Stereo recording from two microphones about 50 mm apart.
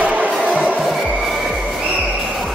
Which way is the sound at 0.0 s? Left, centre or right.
Right.